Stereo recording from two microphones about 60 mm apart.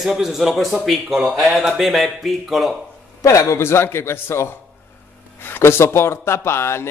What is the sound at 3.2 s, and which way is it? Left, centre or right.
Speech, left.